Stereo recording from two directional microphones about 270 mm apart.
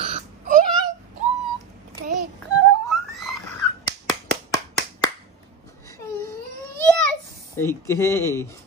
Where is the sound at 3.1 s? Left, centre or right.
Centre.